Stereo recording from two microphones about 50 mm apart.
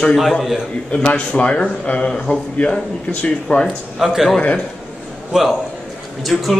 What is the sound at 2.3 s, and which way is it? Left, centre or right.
Speech, left.